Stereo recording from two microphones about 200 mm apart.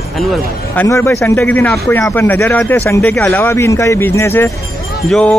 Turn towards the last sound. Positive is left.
turn(degrees=5)  # may be behind; listen again after turning